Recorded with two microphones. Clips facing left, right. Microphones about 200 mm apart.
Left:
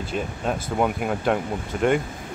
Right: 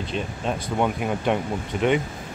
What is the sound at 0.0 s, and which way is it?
Speech, 5° left (ahead or behind).